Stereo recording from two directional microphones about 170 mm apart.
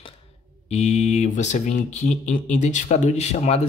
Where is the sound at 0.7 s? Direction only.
40° left (ahead or behind).